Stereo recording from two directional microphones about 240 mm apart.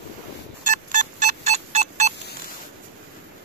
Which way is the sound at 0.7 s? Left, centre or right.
Right.